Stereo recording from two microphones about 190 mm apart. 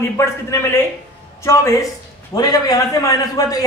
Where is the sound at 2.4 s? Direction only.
20° left (ahead or behind).